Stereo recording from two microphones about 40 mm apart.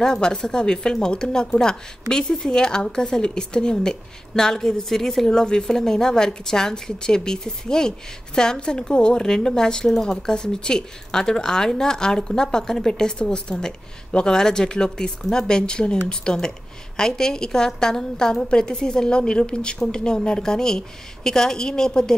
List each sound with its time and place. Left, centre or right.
0.0 s speech: centre
13.2 s speech: left